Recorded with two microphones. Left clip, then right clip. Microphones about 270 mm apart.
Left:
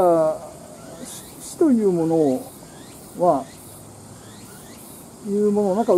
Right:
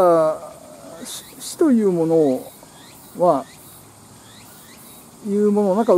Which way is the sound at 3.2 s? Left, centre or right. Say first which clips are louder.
Right 2 dB; centre.